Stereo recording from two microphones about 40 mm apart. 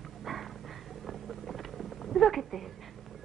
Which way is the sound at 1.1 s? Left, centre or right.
Centre.